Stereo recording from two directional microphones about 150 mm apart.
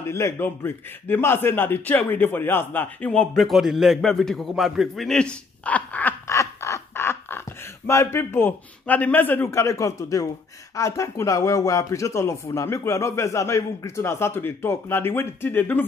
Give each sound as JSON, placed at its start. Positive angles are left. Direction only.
{"t": 0.0, "sound": "a man's voice", "side_deg": 15}